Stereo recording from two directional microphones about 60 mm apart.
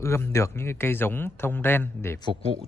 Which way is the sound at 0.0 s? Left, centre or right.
Left.